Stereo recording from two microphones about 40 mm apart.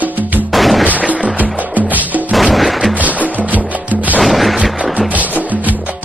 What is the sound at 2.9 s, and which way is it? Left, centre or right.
Music, right.